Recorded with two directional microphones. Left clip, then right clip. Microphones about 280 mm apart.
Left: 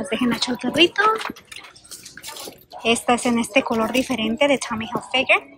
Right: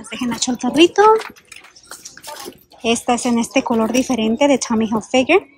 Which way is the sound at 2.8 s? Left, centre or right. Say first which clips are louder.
Right 1 dB; centre.